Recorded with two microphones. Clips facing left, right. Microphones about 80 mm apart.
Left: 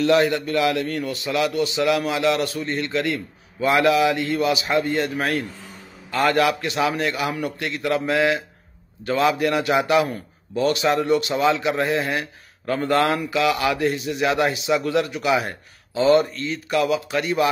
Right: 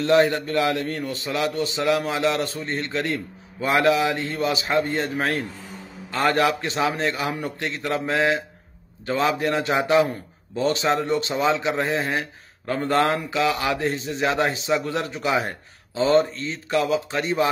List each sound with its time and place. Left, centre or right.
0.0 s a man's voice: right